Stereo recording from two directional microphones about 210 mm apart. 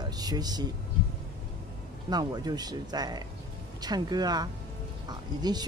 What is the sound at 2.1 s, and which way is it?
Speech, 20° right (ahead or behind).